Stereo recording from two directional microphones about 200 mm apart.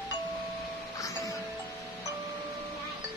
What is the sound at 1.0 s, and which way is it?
Music, 15° left (ahead or behind).